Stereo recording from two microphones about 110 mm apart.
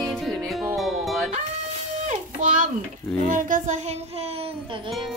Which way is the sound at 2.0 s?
90° right.